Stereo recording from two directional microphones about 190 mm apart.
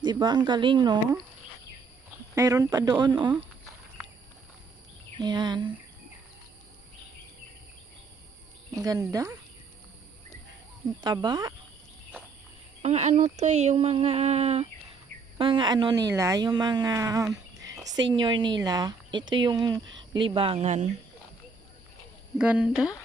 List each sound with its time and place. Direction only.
0.0 s speech: 20° right (ahead or behind)
2.3 s speech: 15° right (ahead or behind)
5.2 s speech: 25° right (ahead or behind)
8.7 s speech: 20° right (ahead or behind)
11.0 s speech: 20° right (ahead or behind)
12.8 s speech: 35° right (ahead or behind)
22.4 s speech: 5° right (ahead or behind)